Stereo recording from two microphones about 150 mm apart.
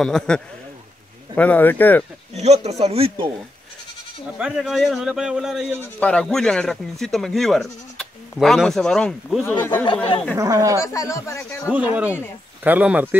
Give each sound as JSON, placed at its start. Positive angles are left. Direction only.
{"t": 0.0, "sound": "speech", "side_deg": 5}
{"t": 2.3, "sound": "speech", "side_deg": -45}
{"t": 4.4, "sound": "speech", "side_deg": -5}
{"t": 5.9, "sound": "speech", "side_deg": 5}
{"t": 9.5, "sound": "speech", "side_deg": 10}
{"t": 10.3, "sound": "speech", "side_deg": -20}
{"t": 10.8, "sound": "speech", "side_deg": 20}
{"t": 11.7, "sound": "speech", "side_deg": -10}